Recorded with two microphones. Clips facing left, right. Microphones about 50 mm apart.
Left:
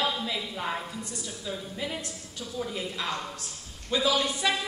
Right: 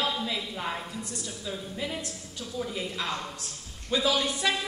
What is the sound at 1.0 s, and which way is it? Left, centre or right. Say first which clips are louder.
Speech: even; centre.